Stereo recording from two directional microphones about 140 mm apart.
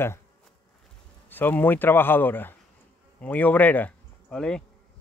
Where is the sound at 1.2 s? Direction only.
15° left (ahead or behind).